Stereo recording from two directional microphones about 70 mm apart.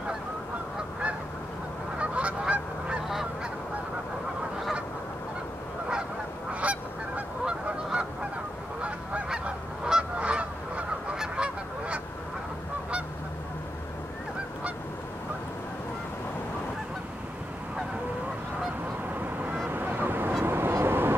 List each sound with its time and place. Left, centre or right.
2.0 s goose: centre
6.6 s goose: centre
19.7 s honk: right